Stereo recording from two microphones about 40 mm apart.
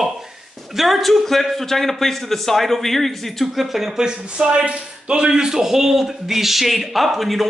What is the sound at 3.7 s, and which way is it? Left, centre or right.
Speech, centre.